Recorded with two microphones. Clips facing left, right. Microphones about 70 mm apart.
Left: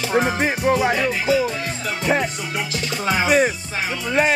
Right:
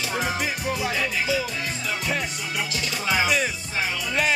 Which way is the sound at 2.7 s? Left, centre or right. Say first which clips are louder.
Left 4 dB; left.